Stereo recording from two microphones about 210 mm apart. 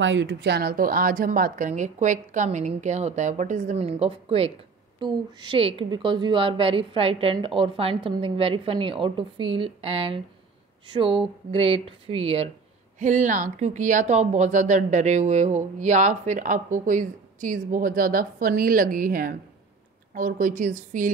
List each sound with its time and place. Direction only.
0.0 s a woman's voice: 60° right (ahead or behind); by 21.1 s 35° right (ahead or behind)